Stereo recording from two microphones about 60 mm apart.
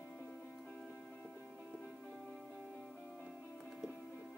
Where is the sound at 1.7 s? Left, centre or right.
Centre.